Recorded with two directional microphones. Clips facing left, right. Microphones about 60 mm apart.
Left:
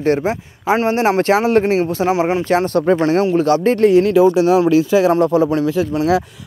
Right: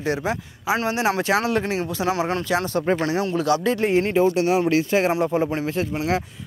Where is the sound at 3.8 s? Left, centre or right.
Left.